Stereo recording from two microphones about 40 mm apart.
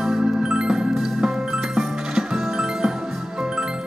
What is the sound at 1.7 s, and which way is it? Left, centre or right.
Music, centre.